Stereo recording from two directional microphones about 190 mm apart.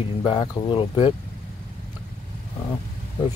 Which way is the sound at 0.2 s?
25° left (ahead or behind).